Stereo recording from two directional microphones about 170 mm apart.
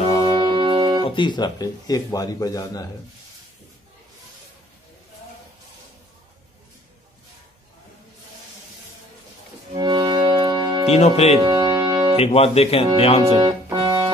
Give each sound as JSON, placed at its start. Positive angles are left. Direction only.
{"t": 0.0, "sound": "music", "side_deg": 35}
{"t": 0.4, "sound": "music", "side_deg": -30}
{"t": 1.0, "sound": "speech", "side_deg": 25}
{"t": 9.8, "sound": "music", "side_deg": -25}
{"t": 10.9, "sound": "speech", "side_deg": 40}
{"t": 11.4, "sound": "music", "side_deg": -25}
{"t": 12.2, "sound": "speech", "side_deg": 35}
{"t": 13.4, "sound": "organ", "side_deg": -25}